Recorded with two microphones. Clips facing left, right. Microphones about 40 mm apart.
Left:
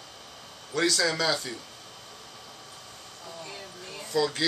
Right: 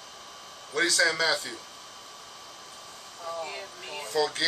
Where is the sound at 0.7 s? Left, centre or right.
Centre.